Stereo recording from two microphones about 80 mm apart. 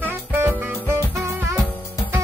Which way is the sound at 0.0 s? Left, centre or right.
Right.